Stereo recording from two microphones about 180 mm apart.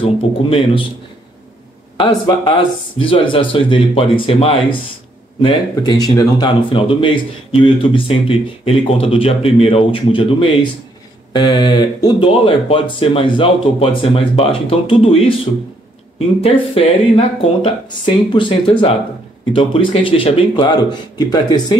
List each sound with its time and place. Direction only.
0.5 s speech: 30° left (ahead or behind)
2.0 s speech: 25° left (ahead or behind)
16.4 s speech: 30° left (ahead or behind)